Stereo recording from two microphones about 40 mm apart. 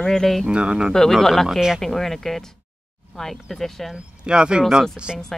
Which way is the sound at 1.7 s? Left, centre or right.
Centre.